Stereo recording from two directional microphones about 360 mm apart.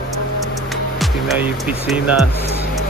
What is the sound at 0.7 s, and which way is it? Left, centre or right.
Music, centre.